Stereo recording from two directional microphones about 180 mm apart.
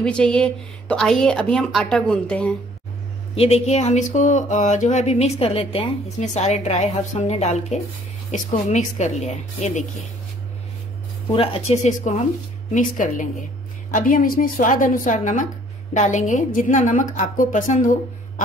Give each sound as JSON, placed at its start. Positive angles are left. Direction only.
{"t": 0.0, "sound": "a woman's voice", "side_deg": 5}
{"t": 3.3, "sound": "speech", "side_deg": 35}
{"t": 11.3, "sound": "a woman's voice", "side_deg": 35}